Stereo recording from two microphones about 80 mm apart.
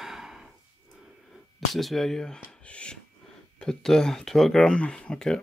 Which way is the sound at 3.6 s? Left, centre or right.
Centre.